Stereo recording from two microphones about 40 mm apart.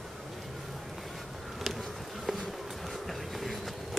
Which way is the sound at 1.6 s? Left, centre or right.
Centre.